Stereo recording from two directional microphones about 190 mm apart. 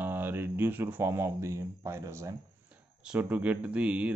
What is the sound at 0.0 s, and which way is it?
Speech, 10° right (ahead or behind).